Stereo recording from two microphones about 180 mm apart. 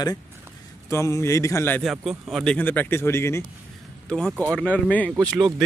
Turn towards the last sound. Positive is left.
turn(degrees=5)  # may be behind; listen again after turning